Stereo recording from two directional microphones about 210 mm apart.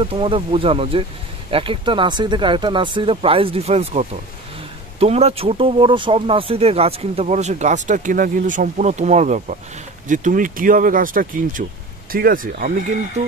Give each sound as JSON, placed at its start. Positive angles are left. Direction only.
{"t": 0.0, "sound": "speech", "side_deg": -25}